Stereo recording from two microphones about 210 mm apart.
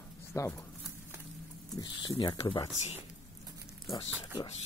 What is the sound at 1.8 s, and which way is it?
Speech, 20° left (ahead or behind).